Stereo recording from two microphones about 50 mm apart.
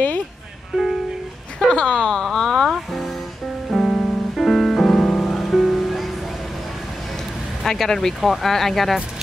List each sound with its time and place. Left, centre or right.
1.7 s speech: centre
2.2 s a sound: centre
3.7 s music: centre
7.6 s speech: centre